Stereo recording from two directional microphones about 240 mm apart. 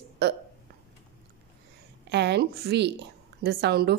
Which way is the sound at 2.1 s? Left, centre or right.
Right.